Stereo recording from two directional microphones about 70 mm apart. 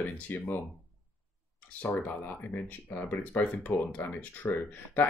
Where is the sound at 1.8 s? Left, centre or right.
Left.